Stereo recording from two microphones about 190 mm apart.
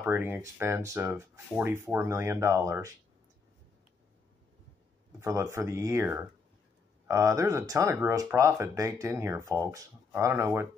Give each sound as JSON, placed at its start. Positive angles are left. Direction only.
{"t": 0.0, "sound": "speech", "side_deg": -10}
{"t": 5.2, "sound": "speech", "side_deg": -15}